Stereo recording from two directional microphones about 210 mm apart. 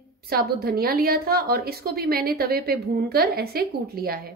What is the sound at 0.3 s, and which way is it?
A woman's voice, 45° right (ahead or behind).